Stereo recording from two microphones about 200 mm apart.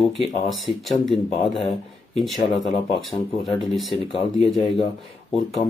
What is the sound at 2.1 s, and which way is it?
Speech, centre (ahead or behind).